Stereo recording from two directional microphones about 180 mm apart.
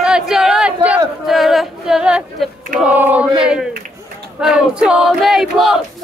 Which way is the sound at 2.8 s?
10° right (ahead or behind).